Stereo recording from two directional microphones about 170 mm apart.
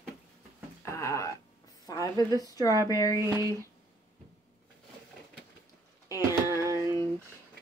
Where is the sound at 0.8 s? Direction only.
15° left (ahead or behind).